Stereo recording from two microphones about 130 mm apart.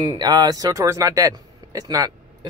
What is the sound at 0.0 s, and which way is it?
Speech, 30° right (ahead or behind).